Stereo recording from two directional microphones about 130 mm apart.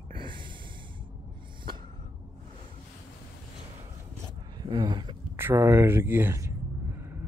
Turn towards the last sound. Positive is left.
turn(degrees=-20)  # may be behind; listen again after turning